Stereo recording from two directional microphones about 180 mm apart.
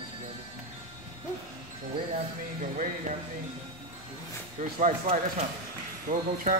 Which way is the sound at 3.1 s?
45° right (ahead or behind).